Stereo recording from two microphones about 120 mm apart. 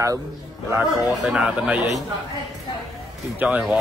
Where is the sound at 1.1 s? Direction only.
5° right (ahead or behind).